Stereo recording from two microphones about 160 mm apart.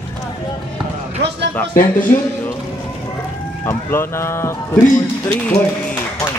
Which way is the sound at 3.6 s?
15° left (ahead or behind).